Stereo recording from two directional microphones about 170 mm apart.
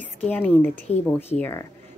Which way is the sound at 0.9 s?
40° left (ahead or behind).